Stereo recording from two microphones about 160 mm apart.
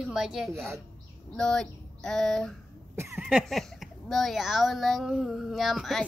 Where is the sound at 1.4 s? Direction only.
5° left (ahead or behind).